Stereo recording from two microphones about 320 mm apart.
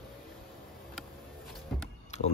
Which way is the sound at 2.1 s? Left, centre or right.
Left.